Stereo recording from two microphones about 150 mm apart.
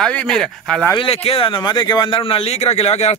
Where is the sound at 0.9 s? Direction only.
40° left (ahead or behind).